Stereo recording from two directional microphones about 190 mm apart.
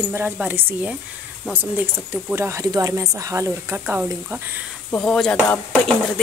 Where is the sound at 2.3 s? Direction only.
15° right (ahead or behind).